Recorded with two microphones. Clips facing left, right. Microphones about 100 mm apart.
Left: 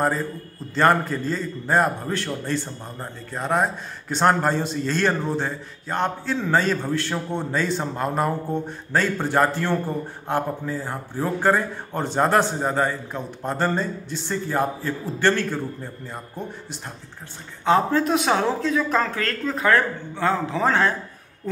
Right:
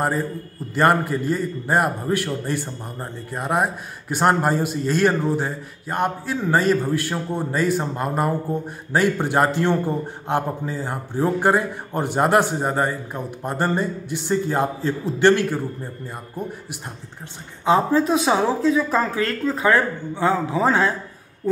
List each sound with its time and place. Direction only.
0.7 s a man's voice: 10° right (ahead or behind)
8.9 s a man's voice: 15° right (ahead or behind)
17.6 s a man's voice: 5° right (ahead or behind)